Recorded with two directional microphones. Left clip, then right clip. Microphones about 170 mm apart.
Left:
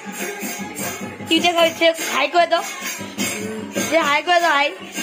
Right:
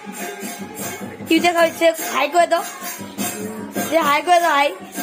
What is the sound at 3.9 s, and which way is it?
Speech, 10° right (ahead or behind).